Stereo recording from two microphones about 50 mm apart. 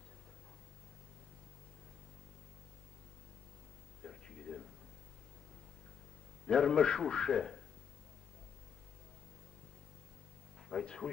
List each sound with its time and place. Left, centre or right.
4.0 s a sound: centre
6.4 s a man's voice: centre
10.7 s dog: centre